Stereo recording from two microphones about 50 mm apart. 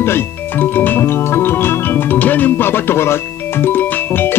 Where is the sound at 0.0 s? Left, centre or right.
Left.